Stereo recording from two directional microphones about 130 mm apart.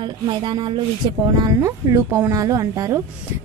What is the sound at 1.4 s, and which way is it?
A woman's voice, 25° right (ahead or behind).